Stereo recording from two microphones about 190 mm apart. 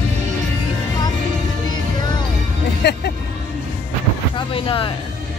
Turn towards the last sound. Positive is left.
turn(degrees=25)  # may be behind; listen again after turning